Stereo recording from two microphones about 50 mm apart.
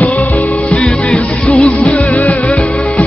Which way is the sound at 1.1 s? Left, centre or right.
Left.